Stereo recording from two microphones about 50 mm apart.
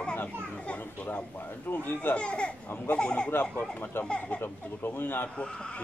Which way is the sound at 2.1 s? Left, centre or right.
Left.